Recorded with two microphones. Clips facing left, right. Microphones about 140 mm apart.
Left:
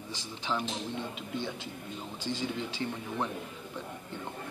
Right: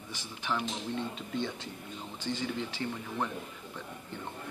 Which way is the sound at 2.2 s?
15° left (ahead or behind).